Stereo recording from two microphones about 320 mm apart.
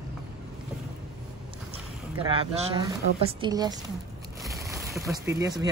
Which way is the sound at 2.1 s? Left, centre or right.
Centre.